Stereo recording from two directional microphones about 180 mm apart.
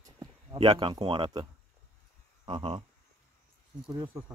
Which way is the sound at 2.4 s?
30° right (ahead or behind).